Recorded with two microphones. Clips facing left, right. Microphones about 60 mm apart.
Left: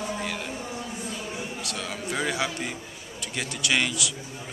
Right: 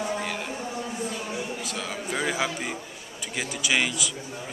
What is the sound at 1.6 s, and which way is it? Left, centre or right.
A man's voice, centre.